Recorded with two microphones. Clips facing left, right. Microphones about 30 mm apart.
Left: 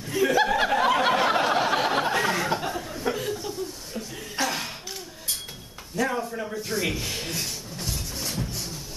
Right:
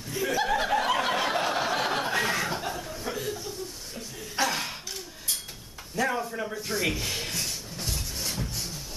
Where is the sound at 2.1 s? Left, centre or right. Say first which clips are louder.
Left 2 dB; centre.